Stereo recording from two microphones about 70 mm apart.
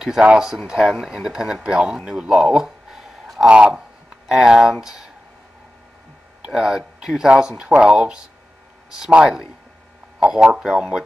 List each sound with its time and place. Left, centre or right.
0.0 s speech: centre
2.0 s a sound: centre
3.4 s speech: centre
4.3 s speech: centre
6.4 s speech: centre
9.2 s speech: centre
10.2 s speech: centre